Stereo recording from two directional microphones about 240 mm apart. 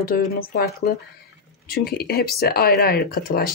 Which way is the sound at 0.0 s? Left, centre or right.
Left.